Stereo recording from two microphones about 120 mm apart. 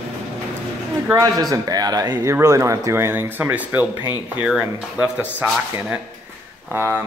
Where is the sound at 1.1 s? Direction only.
30° right (ahead or behind); by 6.0 s 10° right (ahead or behind).